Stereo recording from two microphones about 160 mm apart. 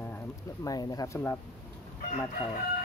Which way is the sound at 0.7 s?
25° left (ahead or behind).